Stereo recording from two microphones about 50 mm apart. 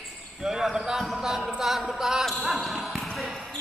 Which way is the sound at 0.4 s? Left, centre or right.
Centre.